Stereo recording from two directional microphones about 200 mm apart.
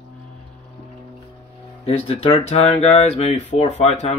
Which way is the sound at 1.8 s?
30° left (ahead or behind).